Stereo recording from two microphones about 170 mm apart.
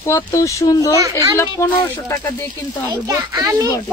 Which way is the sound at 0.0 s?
15° left (ahead or behind).